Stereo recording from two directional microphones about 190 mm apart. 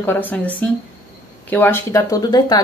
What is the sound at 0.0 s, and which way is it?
Speech, 10° left (ahead or behind).